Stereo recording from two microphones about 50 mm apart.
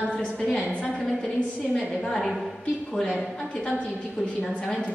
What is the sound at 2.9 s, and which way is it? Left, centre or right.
Speech, centre.